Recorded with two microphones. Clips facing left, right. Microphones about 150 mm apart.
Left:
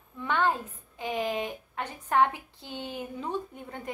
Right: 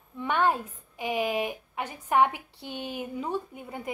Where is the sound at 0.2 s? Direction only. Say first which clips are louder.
Right 2 dB; 15° right (ahead or behind).